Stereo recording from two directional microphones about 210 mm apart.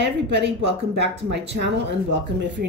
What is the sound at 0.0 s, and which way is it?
Speech, 55° right (ahead or behind).